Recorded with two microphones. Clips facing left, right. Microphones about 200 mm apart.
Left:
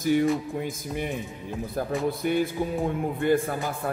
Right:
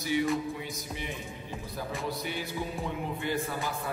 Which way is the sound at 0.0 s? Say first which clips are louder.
Left 6 dB; 50° left (ahead or behind).